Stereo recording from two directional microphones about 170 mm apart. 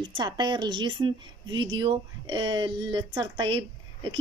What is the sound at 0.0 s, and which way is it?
Speech, 25° right (ahead or behind).